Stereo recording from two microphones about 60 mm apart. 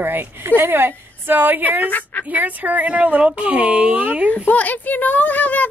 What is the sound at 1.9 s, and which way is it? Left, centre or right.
Speech, left.